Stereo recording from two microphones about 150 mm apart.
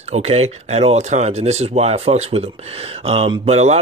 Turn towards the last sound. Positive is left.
turn(degrees=-45)  # may be behind; listen again after turning